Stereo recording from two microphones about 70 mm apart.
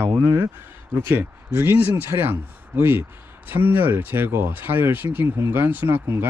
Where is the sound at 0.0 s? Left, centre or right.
Right.